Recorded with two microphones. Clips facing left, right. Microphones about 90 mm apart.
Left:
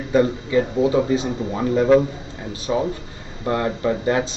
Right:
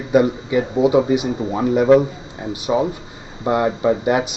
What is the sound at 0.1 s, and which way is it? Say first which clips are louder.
Speech: right 2 dB; 15° right (ahead or behind).